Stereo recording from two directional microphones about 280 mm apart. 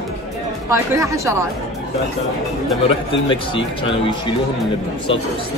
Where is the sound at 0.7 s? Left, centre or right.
Centre.